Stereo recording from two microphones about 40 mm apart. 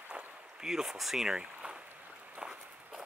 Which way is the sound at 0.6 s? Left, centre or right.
Centre.